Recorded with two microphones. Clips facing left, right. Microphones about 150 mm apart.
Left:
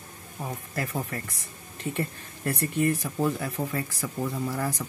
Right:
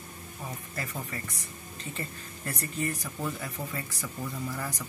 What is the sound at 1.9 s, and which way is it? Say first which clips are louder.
Speech: left 7 dB; 60° left (ahead or behind).